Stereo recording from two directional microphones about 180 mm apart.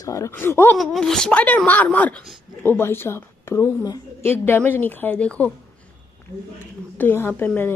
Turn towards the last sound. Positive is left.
turn(degrees=10)  # may be behind; listen again after turning